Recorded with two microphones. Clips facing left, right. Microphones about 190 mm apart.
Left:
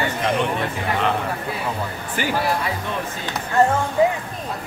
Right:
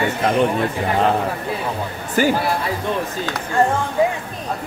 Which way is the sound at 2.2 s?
40° right (ahead or behind).